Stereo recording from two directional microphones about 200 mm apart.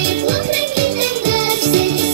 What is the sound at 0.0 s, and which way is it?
Music, 55° right (ahead or behind).